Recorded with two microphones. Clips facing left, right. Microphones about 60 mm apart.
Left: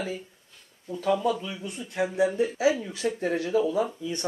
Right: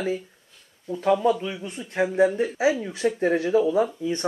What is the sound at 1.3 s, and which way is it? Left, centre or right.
Speech, right.